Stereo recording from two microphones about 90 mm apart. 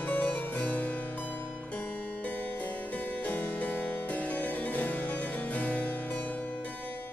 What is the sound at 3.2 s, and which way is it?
Music, 15° left (ahead or behind).